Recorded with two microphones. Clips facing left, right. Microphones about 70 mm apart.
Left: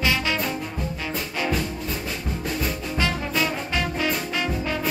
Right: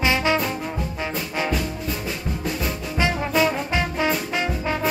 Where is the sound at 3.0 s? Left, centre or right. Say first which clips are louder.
Right 5 dB; right.